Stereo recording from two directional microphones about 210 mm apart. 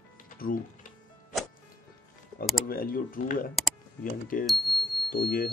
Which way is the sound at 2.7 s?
45° left (ahead or behind).